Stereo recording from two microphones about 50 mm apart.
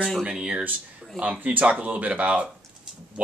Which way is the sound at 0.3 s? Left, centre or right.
Centre.